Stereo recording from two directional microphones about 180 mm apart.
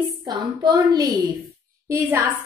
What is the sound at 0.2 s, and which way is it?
A woman's voice, 25° right (ahead or behind).